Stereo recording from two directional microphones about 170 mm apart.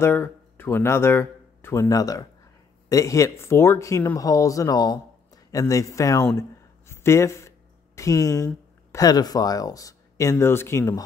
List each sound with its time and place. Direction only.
0.0 s speech: 15° left (ahead or behind)
6.9 s a sound: 15° left (ahead or behind)
8.9 s speech: 20° left (ahead or behind)